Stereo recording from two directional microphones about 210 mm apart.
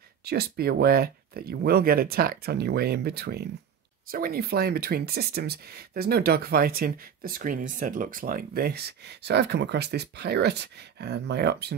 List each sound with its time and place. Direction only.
0.2 s speech: 50° right (ahead or behind)